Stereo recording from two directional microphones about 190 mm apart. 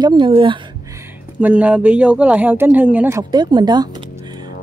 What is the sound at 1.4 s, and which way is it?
A woman's voice, 5° right (ahead or behind).